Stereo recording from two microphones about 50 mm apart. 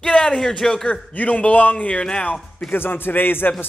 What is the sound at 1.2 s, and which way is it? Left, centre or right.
A man's voice, left.